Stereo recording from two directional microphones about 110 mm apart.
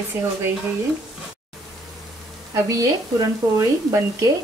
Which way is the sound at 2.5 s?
30° right (ahead or behind).